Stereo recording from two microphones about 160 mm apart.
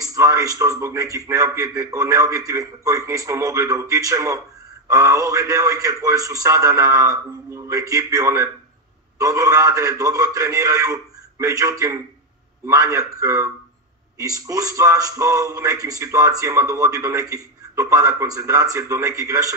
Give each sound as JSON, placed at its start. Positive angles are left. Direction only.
{"t": 0.0, "sound": "speech", "side_deg": -20}